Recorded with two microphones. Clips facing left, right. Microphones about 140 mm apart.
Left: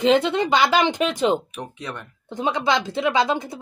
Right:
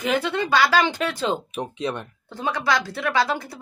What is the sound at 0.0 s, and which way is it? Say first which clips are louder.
A woman's voice: left 5 dB; 20° left (ahead or behind).